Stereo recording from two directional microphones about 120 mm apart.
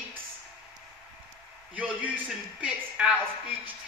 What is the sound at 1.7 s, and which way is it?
A woman's voice, 15° right (ahead or behind).